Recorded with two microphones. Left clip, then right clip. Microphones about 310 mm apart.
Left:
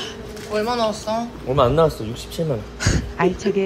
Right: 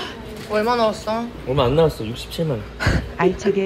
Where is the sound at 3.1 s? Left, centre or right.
Centre.